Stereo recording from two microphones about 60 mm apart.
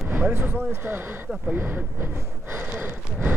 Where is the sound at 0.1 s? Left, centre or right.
Right.